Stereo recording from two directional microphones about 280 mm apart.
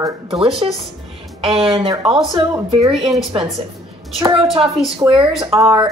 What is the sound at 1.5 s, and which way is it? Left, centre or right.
A woman's voice, centre.